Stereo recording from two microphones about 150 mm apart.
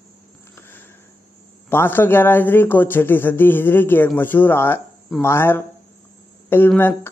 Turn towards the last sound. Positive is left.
turn(degrees=15)  # may be behind; listen again after turning